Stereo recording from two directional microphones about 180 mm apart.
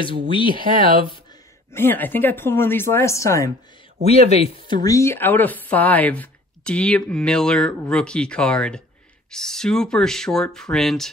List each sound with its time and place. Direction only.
0.3 s speech: 25° left (ahead or behind)
1.7 s speech: 10° left (ahead or behind)
4.0 s speech: 35° left (ahead or behind)
4.8 s speech: 15° left (ahead or behind)